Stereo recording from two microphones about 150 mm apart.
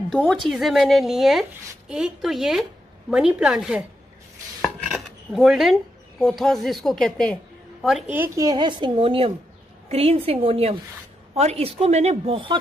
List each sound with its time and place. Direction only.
0.1 s speech: centre (ahead or behind)
4.6 s chopping: centre (ahead or behind)
6.2 s speech: centre (ahead or behind)
8.2 s speech: 25° right (ahead or behind)